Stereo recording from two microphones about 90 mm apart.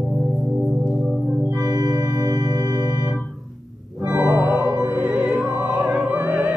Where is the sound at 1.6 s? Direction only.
40° right (ahead or behind).